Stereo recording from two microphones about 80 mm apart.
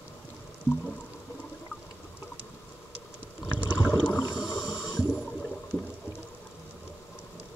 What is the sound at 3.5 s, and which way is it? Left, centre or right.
Rowboat, centre.